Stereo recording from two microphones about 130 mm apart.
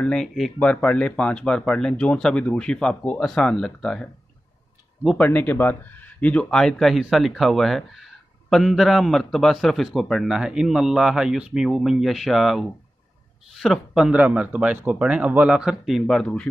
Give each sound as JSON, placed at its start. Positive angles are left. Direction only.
{"t": 0.0, "sound": "speech", "side_deg": 5}
{"t": 5.2, "sound": "speech", "side_deg": 15}